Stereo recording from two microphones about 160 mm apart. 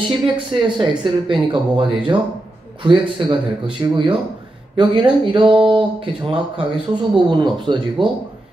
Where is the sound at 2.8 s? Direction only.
30° right (ahead or behind).